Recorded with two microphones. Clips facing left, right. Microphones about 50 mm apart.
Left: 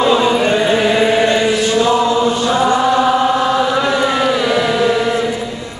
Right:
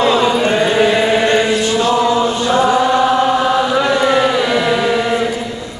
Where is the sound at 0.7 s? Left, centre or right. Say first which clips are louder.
Even; centre.